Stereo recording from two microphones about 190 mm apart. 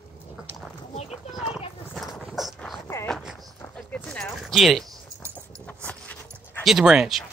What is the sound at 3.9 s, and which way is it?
Clip-clop, 5° left (ahead or behind).